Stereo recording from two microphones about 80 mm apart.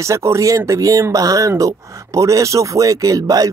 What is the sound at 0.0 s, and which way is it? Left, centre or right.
Speech, right.